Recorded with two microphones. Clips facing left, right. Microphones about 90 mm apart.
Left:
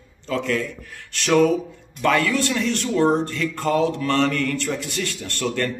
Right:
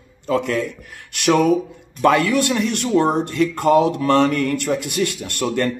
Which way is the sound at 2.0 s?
20° right (ahead or behind).